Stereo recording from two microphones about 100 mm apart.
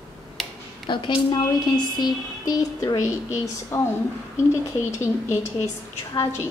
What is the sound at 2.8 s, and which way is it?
A woman's voice, 30° left (ahead or behind).